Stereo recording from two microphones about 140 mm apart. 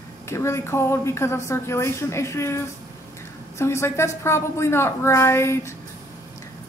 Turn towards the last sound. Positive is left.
turn(degrees=20)  # may be behind; listen again after turning